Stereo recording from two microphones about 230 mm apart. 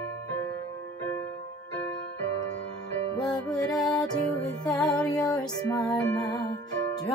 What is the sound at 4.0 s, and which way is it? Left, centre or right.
Music, centre.